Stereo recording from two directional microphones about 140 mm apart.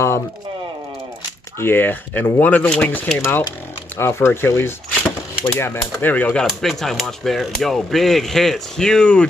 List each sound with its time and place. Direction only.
1.6 s speech: 15° left (ahead or behind)
5.0 s a sound: 15° left (ahead or behind)
5.9 s speech: 10° left (ahead or behind)